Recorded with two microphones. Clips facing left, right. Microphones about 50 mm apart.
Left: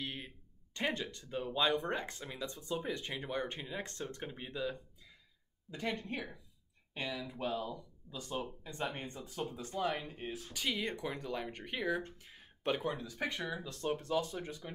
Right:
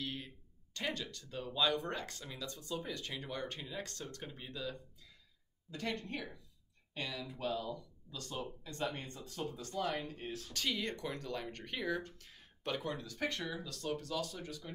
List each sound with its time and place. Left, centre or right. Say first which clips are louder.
0.0 s a sound: even; left
0.7 s speech: left 3 dB; left
11.8 s speech: left 2 dB; left
12.1 s speech: left 3 dB; centre
13.5 s speech: left 3 dB; left